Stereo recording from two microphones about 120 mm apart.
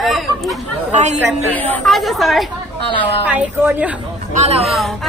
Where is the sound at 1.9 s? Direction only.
Centre (ahead or behind).